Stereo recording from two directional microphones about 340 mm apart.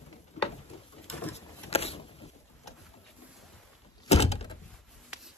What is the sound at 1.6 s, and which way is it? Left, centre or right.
Vehicle, centre.